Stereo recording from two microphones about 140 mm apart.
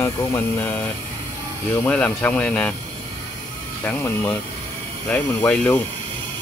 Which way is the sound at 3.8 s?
15° left (ahead or behind).